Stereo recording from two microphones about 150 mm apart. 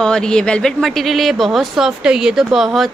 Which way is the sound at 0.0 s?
5° left (ahead or behind).